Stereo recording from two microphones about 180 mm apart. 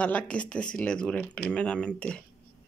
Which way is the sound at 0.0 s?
5° left (ahead or behind).